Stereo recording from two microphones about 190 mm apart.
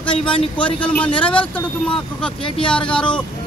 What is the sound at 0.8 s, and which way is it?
Speech, 5° left (ahead or behind).